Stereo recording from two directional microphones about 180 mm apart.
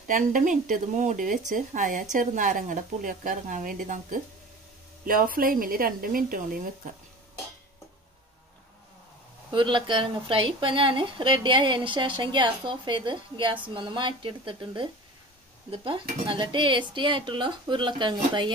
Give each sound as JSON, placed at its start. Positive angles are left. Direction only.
{"t": 0.0, "sound": "speech", "side_deg": -45}
{"t": 9.5, "sound": "speech", "side_deg": -25}